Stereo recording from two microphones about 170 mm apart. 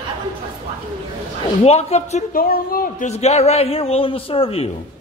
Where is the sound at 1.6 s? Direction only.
40° left (ahead or behind).